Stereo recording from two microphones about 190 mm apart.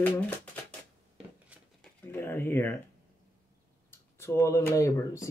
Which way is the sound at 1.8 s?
10° left (ahead or behind).